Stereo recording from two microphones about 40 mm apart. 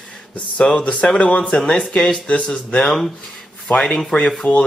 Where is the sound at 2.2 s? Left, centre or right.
Left.